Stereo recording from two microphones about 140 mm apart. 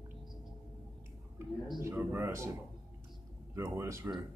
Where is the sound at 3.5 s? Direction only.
20° right (ahead or behind).